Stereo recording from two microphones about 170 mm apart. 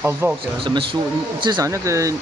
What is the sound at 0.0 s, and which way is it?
Speech, 15° right (ahead or behind).